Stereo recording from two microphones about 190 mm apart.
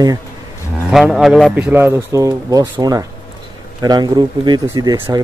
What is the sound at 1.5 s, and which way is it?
Speech, 10° right (ahead or behind).